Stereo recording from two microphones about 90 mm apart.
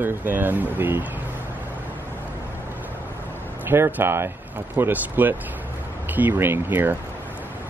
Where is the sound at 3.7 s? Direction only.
20° right (ahead or behind).